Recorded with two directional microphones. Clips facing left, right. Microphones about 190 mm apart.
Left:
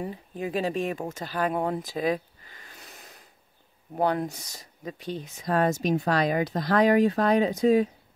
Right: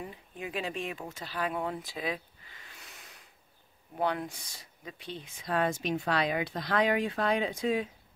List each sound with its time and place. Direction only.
0.0 s speech: 40° left (ahead or behind)